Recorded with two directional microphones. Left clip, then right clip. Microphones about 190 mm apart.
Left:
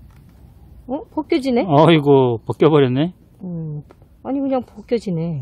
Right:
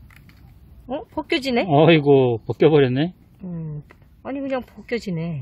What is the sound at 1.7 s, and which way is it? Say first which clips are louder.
Speech: left 2 dB; centre (ahead or behind).